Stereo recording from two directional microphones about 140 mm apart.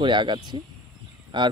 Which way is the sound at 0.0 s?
35° right (ahead or behind).